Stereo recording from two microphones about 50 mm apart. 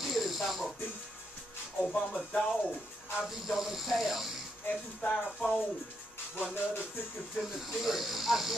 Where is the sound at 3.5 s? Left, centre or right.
Centre.